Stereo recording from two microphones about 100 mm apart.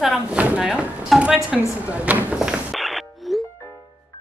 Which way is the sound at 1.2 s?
10° right (ahead or behind).